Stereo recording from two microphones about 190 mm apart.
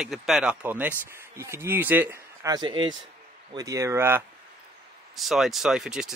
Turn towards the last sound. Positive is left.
turn(degrees=-5)  # may be behind; listen again after turning